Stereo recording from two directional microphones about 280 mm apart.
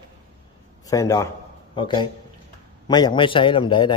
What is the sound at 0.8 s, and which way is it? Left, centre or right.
A man's voice, centre.